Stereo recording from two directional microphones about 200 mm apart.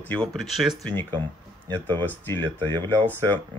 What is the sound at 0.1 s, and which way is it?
Speech, 5° left (ahead or behind).